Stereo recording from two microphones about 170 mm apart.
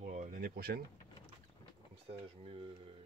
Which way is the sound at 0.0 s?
50° right (ahead or behind).